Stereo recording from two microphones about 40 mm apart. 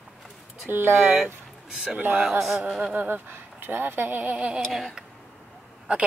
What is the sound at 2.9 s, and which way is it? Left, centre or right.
Speech, right.